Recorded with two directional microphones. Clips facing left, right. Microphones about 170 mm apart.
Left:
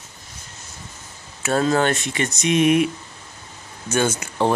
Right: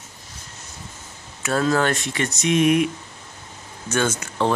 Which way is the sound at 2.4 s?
Centre (ahead or behind).